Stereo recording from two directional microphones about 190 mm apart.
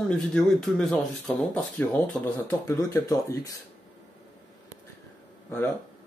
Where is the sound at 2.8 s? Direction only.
20° left (ahead or behind).